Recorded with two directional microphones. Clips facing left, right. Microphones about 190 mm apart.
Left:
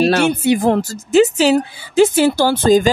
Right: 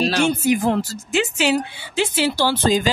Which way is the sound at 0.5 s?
45° left (ahead or behind).